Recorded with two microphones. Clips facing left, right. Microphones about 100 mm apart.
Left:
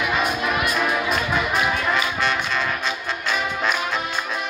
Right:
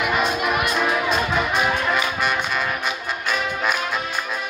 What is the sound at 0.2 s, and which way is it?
Music, 20° right (ahead or behind).